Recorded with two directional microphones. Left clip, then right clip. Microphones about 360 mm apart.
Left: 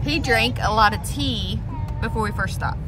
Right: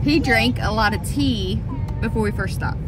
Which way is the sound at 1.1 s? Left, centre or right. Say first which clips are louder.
Right 3 dB; left.